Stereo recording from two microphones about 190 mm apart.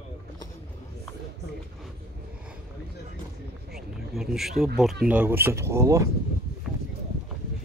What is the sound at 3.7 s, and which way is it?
Speech, centre (ahead or behind).